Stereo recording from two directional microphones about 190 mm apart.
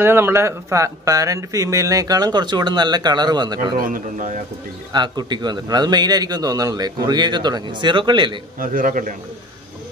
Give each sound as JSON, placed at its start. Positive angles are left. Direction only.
{"t": 0.0, "sound": "speech", "side_deg": -10}
{"t": 3.7, "sound": "a man's voice", "side_deg": -45}
{"t": 4.9, "sound": "speech", "side_deg": -20}
{"t": 8.5, "sound": "a man's voice", "side_deg": -45}